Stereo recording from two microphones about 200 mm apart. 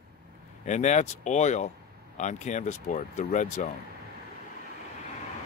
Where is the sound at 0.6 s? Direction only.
35° left (ahead or behind).